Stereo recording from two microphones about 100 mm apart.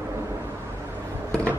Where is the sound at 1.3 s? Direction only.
15° left (ahead or behind).